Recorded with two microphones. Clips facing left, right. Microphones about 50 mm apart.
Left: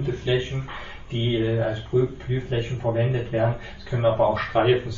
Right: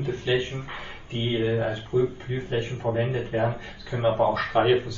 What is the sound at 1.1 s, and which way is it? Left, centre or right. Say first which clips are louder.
Speech: left 1 dB; right.